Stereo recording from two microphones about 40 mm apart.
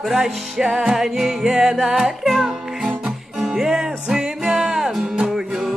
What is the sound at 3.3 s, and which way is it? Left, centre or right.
Music, centre.